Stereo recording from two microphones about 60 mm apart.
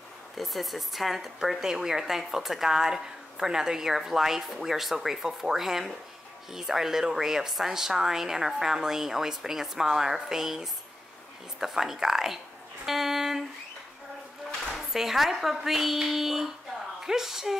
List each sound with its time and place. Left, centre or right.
0.4 s a woman's voice: centre
12.8 s a sound: centre
14.7 s a woman's voice: centre